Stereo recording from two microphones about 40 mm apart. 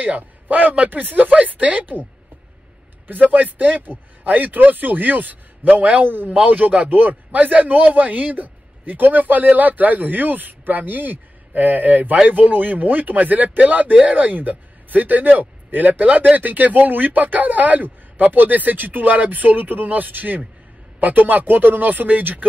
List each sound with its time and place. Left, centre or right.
0.0 s a man's voice: right
3.1 s a man's voice: right
6.0 s speech: right
6.3 s a man's voice: right